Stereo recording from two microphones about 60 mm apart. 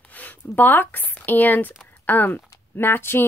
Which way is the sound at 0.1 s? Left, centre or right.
Left.